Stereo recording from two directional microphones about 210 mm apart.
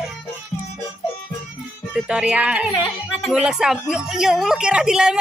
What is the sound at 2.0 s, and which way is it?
A woman's voice, 5° right (ahead or behind).